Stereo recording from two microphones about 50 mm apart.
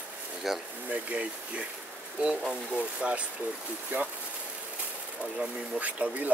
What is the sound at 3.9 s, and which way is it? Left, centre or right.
Speech, right.